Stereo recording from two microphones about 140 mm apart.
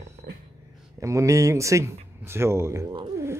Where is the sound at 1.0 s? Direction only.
20° right (ahead or behind).